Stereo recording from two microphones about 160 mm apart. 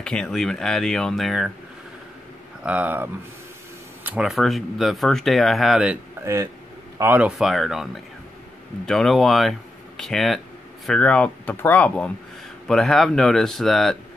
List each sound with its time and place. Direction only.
0.0 s speech: 5° left (ahead or behind)
2.6 s speech: 10° right (ahead or behind)
6.2 s speech: 20° right (ahead or behind); by 13.9 s centre (ahead or behind)